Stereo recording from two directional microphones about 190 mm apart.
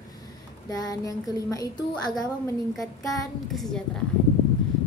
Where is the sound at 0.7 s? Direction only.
20° left (ahead or behind).